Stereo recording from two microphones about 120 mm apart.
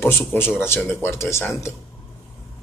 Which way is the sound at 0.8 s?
20° left (ahead or behind).